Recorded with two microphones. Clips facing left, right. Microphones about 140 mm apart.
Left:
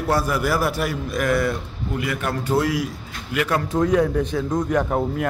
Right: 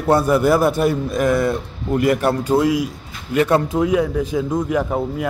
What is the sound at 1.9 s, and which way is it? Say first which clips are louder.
Speech: right 9 dB; 45° right (ahead or behind).